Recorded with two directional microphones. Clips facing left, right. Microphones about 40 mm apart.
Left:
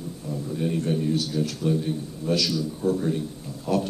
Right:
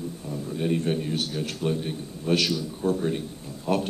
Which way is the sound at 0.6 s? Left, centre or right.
Right.